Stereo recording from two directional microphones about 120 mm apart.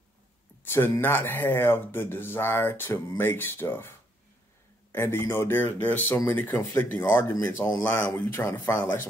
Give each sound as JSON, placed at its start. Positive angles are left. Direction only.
{"t": 0.7, "sound": "speech", "side_deg": 20}
{"t": 4.9, "sound": "speech", "side_deg": 20}